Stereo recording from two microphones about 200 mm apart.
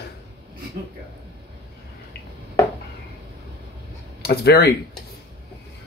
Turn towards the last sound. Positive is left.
turn(degrees=50)  # may be behind; listen again after turning